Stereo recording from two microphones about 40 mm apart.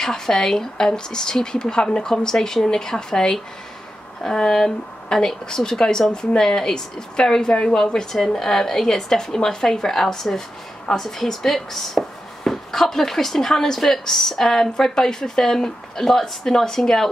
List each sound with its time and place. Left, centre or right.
0.0 s speech: centre